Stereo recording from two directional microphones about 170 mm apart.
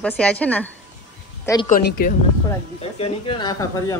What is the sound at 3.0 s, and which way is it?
Speech, 30° left (ahead or behind).